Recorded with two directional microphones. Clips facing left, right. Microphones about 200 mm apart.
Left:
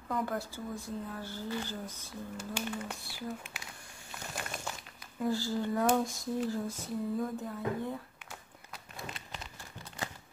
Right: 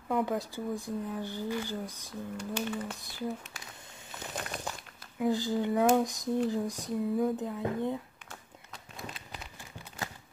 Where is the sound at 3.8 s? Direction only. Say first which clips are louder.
Right 2 dB; 20° right (ahead or behind).